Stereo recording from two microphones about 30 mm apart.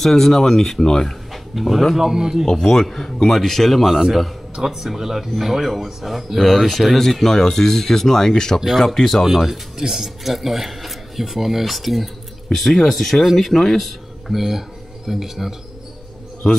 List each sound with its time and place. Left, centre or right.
0.0 s speech: centre
1.3 s dog: centre
2.0 s speech: centre
2.4 s speech: centre
3.8 s speech: centre
9.2 s speech: centre
10.2 s speech: centre